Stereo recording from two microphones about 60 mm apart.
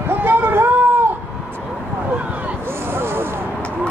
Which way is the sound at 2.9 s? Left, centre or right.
Right.